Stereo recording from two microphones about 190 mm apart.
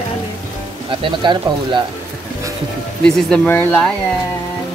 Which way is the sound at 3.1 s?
5° left (ahead or behind).